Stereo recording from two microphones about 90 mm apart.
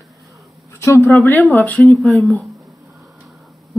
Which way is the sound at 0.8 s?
25° left (ahead or behind).